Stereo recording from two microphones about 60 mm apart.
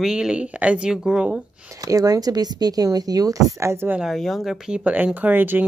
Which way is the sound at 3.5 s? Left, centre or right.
Right.